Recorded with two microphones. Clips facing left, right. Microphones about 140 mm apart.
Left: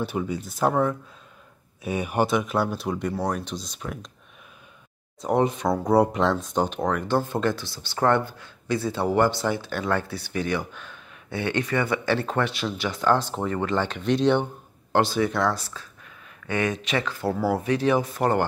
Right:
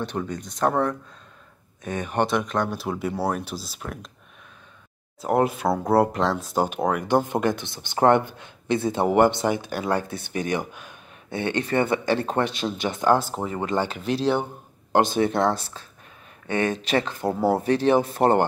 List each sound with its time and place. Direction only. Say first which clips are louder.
0.0 s speech: left 1 dB; 5° left (ahead or behind)
5.2 s speech: right 1 dB; 5° right (ahead or behind)
15.2 s speech: right 2 dB; 25° right (ahead or behind)
17.1 s speech: right 2 dB; 20° right (ahead or behind)